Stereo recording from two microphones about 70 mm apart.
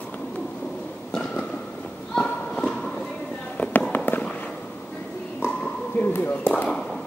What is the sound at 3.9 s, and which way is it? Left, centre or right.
Fireworks, left.